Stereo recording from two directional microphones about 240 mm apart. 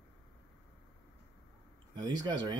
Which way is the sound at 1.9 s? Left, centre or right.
Centre.